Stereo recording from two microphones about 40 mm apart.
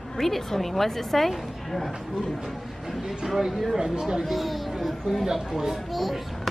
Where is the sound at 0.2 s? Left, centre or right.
Centre.